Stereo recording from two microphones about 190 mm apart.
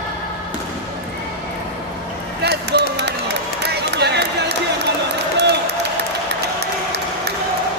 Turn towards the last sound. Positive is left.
turn(degrees=-65)  # may be behind; listen again after turning